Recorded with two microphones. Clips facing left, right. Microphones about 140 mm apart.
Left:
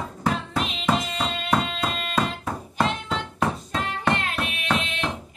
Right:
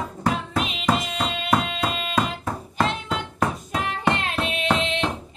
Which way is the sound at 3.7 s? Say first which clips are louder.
Right 1 dB; 15° right (ahead or behind).